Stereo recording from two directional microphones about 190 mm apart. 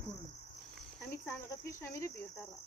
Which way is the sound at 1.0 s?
10° left (ahead or behind).